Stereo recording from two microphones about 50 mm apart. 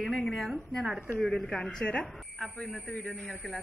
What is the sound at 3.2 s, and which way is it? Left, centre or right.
Speech, centre.